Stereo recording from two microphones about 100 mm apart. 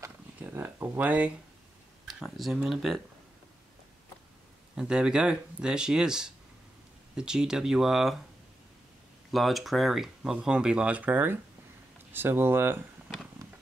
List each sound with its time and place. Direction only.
0.4 s a sound: 20° right (ahead or behind)
2.0 s speech: centre (ahead or behind)
4.7 s speech: 10° right (ahead or behind)
9.3 s speech: centre (ahead or behind); by 12.8 s 20° right (ahead or behind)